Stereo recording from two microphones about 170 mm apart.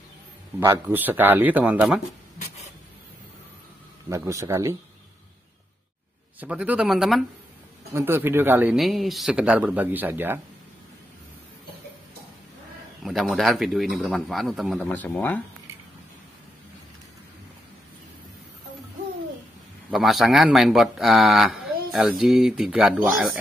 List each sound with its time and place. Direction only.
0.6 s speech: 15° right (ahead or behind)
4.1 s speech: 15° right (ahead or behind)
6.4 s a man's voice: 10° right (ahead or behind)
7.9 s speech: 15° right (ahead or behind)
8.7 s speech: centre (ahead or behind)
13.0 s a man's voice: centre (ahead or behind)
14.8 s speech: 10° left (ahead or behind)
19.9 s a man's voice: centre (ahead or behind)